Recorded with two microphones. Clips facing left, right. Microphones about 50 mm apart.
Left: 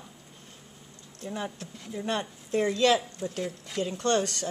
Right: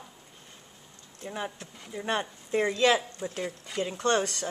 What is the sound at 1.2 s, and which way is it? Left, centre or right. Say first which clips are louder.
Speech: left 1 dB; centre.